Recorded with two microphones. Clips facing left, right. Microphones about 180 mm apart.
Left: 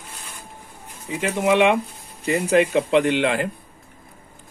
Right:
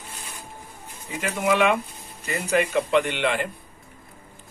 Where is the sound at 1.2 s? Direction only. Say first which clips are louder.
Left 4 dB; 25° left (ahead or behind).